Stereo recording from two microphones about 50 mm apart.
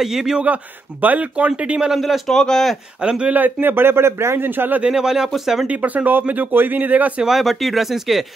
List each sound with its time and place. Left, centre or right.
0.0 s speech: centre
1.3 s speech: right
2.0 s speech: centre
2.2 s speech: centre
3.0 s speech: centre
3.6 s speech: right
4.5 s speech: right
4.9 s speech: centre
5.7 s speech: right
7.2 s speech: centre